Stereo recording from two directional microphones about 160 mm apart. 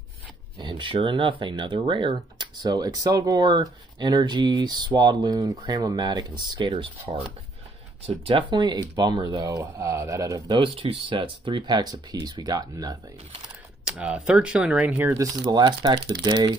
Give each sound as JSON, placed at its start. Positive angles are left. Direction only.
{"t": 0.6, "sound": "speech", "side_deg": -30}
{"t": 6.7, "sound": "speech", "side_deg": -40}
{"t": 13.8, "sound": "speech", "side_deg": -5}